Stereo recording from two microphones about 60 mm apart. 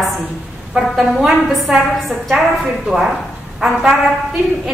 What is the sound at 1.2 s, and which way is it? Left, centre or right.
A woman's voice, centre.